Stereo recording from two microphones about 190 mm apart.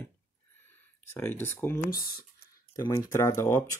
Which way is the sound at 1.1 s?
10° left (ahead or behind).